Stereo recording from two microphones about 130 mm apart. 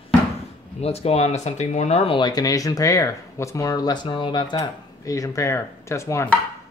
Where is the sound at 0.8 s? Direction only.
50° left (ahead or behind).